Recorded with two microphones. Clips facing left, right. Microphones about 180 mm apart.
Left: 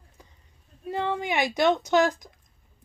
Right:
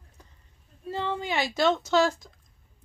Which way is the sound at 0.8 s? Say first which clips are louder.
Left 2 dB; 15° left (ahead or behind).